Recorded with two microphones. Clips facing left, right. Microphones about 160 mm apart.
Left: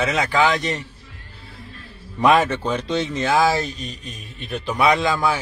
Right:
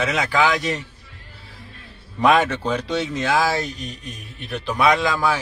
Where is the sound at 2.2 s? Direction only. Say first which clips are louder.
Left 1 dB; centre (ahead or behind).